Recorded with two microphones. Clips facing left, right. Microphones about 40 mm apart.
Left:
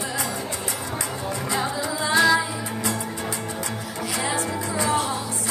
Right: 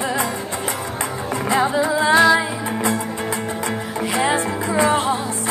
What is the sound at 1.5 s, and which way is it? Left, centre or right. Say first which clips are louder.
Music: right 10 dB; right.